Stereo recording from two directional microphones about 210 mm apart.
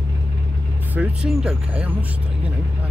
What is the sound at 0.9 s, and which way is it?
Speech, 5° right (ahead or behind).